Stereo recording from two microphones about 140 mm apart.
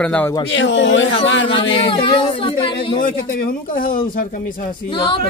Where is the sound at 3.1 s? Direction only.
90° left.